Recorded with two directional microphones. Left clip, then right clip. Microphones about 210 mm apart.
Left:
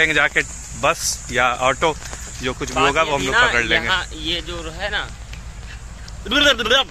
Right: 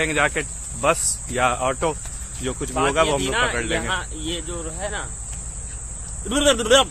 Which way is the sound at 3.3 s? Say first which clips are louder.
Left 6 dB; 5° right (ahead or behind).